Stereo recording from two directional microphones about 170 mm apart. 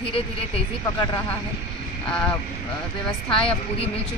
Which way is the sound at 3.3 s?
30° left (ahead or behind).